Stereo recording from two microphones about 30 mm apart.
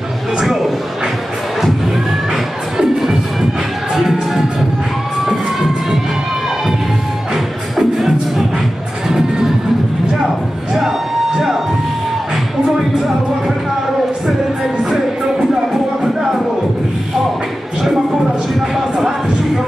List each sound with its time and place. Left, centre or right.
2.8 s music: centre
3.9 s music: centre
5.2 s crowd: centre
7.3 s music: centre
10.7 s music: centre
17.8 s a sound: centre